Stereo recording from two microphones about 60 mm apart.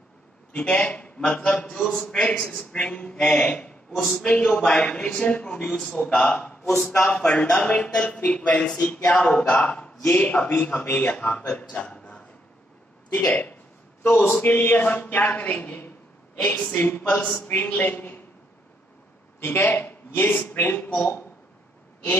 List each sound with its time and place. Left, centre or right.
0.5 s speech: centre
11.5 s a sound: left
13.1 s a woman's voice: left
19.4 s speech: left